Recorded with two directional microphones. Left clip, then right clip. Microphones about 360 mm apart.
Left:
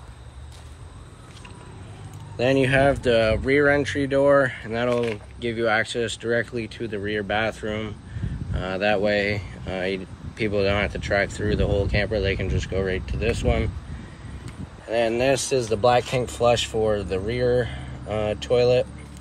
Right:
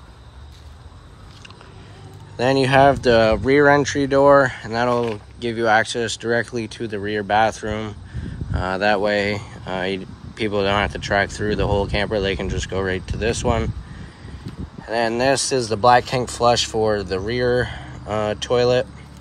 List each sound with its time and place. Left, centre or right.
2.6 s speech: centre
14.9 s speech: centre